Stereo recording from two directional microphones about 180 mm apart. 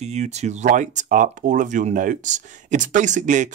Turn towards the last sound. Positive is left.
turn(degrees=-40)  # may be behind; listen again after turning